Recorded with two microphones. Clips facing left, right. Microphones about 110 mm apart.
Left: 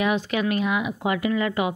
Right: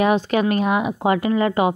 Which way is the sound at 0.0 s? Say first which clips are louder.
Right 6 dB; 40° right (ahead or behind).